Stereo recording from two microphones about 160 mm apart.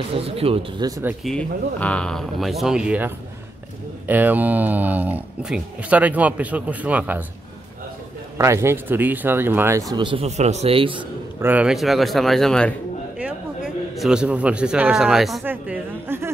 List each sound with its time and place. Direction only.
0.1 s speech: 35° right (ahead or behind)
1.2 s speech: 5° left (ahead or behind)
4.1 s speech: 10° right (ahead or behind)
8.4 s speech: 20° right (ahead or behind)
9.9 s speech: 35° right (ahead or behind)
11.4 s speech: 5° right (ahead or behind)
13.9 s speech: 5° right (ahead or behind)